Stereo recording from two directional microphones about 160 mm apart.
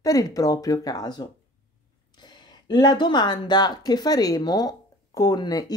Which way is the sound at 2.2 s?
25° left (ahead or behind).